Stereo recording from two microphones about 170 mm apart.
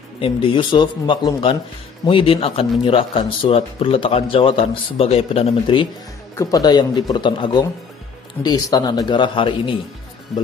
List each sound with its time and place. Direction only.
0.2 s a man's voice: 30° left (ahead or behind)
6.3 s a man's voice: 20° left (ahead or behind)
10.3 s speech: centre (ahead or behind)